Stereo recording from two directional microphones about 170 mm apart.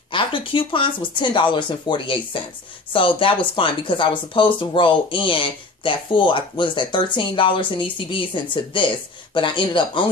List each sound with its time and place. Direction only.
0.1 s speech: 30° left (ahead or behind)